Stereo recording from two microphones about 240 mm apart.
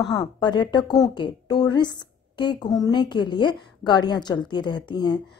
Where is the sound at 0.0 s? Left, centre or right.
Centre.